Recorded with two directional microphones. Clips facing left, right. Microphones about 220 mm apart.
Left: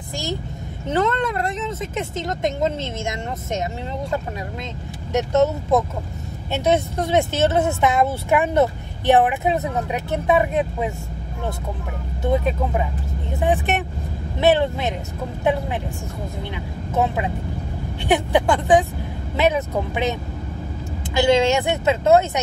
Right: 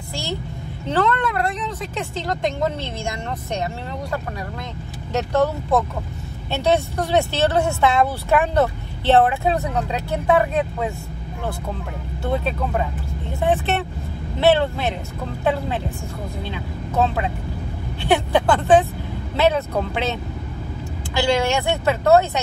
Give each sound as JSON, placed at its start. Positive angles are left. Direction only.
{"t": 0.1, "sound": "a woman's voice", "side_deg": 15}
{"t": 12.2, "sound": "speech", "side_deg": 15}
{"t": 16.4, "sound": "speech", "side_deg": 15}
{"t": 21.2, "sound": "speech", "side_deg": 20}